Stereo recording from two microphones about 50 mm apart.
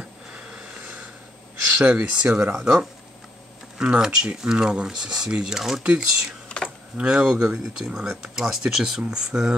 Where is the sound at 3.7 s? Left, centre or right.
Centre.